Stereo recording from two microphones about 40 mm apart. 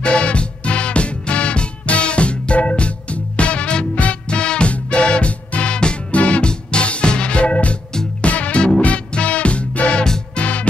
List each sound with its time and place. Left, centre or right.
0.0 s music: left